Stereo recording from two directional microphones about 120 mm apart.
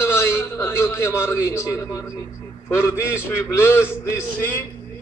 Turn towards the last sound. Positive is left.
turn(degrees=20)  # may be behind; listen again after turning